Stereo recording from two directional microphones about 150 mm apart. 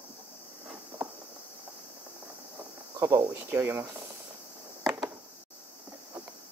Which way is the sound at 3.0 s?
20° right (ahead or behind).